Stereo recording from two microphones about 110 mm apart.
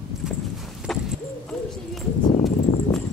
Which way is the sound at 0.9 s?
5° left (ahead or behind).